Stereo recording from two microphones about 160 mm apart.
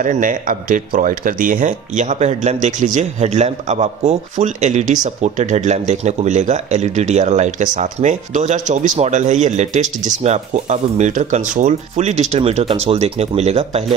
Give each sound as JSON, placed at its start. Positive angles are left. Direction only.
{"t": 0.0, "sound": "speech", "side_deg": -55}